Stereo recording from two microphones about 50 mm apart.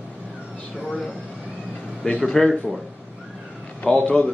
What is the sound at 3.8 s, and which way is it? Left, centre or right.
Speech, left.